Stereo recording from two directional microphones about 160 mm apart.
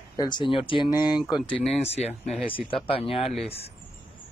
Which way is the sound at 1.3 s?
5° left (ahead or behind).